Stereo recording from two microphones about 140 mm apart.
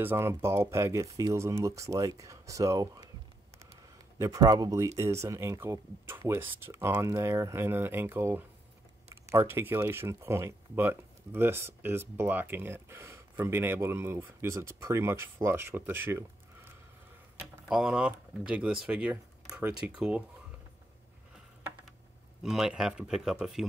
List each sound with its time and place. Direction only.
0.0 s speech: 15° right (ahead or behind)
4.2 s speech: 25° right (ahead or behind)
17.6 s speech: 5° right (ahead or behind)
22.4 s speech: 5° right (ahead or behind)